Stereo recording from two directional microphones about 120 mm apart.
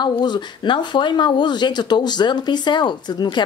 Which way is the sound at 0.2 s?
40° left (ahead or behind).